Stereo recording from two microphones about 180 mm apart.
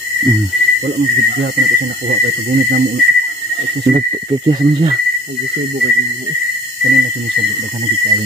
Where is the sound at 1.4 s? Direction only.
50° right (ahead or behind).